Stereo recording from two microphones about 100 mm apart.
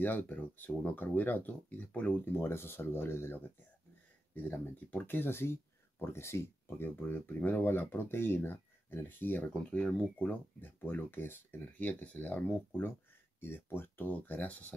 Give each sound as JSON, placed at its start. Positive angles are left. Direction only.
{"t": 0.0, "sound": "speech", "side_deg": 20}